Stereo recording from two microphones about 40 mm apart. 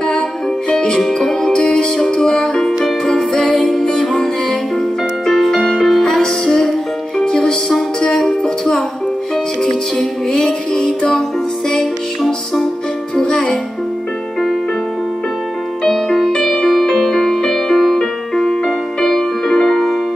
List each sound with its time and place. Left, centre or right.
0.7 s music: centre
9.6 s music: centre
13.1 s music: centre
15.9 s music: centre
16.8 s music: centre